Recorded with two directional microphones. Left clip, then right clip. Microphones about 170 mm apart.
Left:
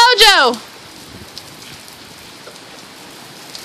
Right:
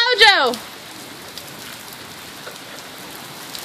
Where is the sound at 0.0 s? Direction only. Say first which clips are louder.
Left 4 dB; 50° left (ahead or behind).